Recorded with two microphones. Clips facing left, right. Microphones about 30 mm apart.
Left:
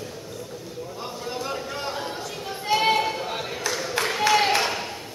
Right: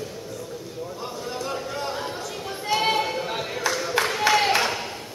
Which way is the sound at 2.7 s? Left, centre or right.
Centre.